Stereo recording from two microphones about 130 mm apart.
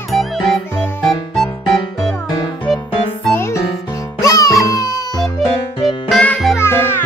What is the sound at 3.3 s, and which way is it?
Music, 20° left (ahead or behind).